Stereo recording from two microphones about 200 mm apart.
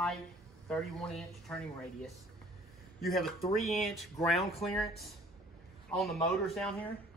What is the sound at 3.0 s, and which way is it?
Speech, 50° left (ahead or behind).